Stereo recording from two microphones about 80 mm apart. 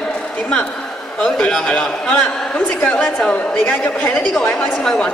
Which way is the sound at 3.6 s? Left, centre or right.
Left.